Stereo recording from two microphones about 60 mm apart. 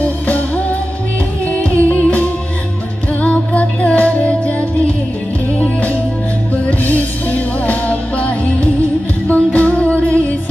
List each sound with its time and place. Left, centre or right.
1.6 s music: left